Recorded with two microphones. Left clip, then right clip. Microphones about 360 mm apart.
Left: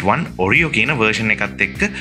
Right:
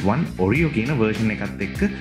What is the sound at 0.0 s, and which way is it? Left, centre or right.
Speech, left.